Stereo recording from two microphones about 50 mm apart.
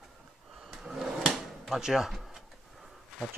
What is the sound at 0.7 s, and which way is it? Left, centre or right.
Drawer open or close, centre.